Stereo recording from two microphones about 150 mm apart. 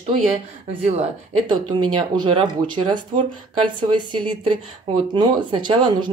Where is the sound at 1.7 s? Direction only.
30° right (ahead or behind).